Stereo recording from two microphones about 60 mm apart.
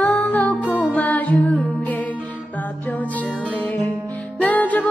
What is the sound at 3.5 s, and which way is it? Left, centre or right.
Music, left.